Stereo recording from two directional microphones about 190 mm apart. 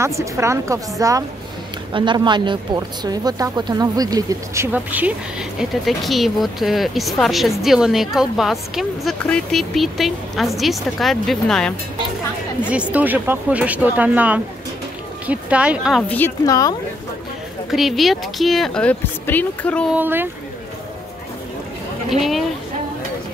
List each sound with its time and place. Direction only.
0.0 s speech: 15° right (ahead or behind)
16.1 s a woman's voice: 10° left (ahead or behind)
17.6 s speech: centre (ahead or behind)
19.9 s speech: 10° right (ahead or behind)